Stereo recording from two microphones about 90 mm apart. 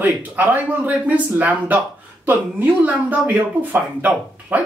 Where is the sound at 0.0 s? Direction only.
20° right (ahead or behind).